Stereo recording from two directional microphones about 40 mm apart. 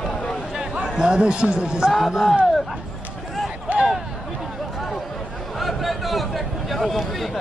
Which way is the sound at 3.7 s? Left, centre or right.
Right.